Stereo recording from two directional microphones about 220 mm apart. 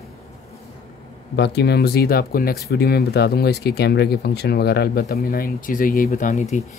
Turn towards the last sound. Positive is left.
turn(degrees=35)  # may be behind; listen again after turning